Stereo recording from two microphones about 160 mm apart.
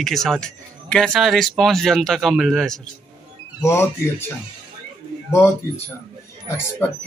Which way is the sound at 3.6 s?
15° left (ahead or behind).